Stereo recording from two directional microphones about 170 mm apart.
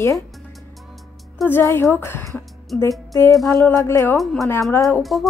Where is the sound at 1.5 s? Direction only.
15° left (ahead or behind).